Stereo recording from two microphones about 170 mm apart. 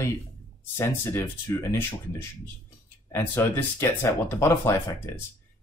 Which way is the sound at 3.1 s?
15° left (ahead or behind).